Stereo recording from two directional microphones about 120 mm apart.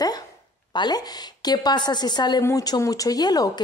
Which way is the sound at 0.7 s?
35° left (ahead or behind).